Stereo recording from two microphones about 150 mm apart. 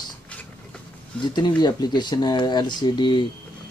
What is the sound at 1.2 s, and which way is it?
Speech, 30° left (ahead or behind).